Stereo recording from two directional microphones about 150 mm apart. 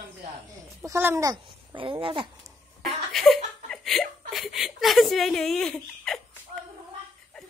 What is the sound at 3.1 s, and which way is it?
Chuckle, centre (ahead or behind).